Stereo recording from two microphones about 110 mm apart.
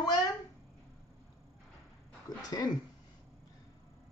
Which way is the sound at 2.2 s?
40° left (ahead or behind).